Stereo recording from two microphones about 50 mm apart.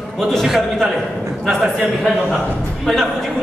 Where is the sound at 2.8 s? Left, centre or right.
Centre.